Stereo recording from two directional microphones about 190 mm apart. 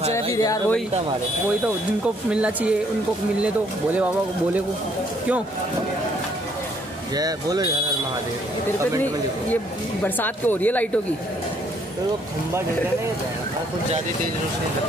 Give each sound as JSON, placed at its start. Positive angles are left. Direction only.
{"t": 0.1, "sound": "a sound", "side_deg": 15}
{"t": 2.3, "sound": "speech", "side_deg": -5}
{"t": 7.2, "sound": "speech", "side_deg": -20}
{"t": 10.0, "sound": "speech", "side_deg": 10}